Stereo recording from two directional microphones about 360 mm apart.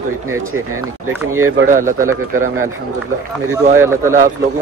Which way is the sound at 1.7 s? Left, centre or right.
Right.